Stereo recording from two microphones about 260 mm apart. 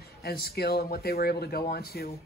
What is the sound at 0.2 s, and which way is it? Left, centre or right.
A man's voice, left.